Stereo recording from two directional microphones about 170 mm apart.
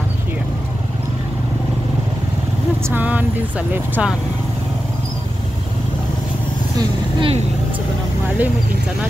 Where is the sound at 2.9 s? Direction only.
10° right (ahead or behind).